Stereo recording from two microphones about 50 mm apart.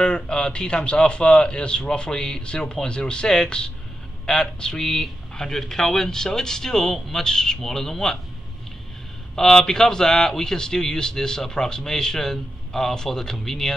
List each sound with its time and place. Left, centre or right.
0.0 s a man's voice: centre
9.3 s speech: centre